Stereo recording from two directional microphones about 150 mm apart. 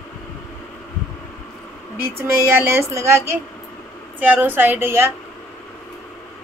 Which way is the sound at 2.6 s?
15° right (ahead or behind).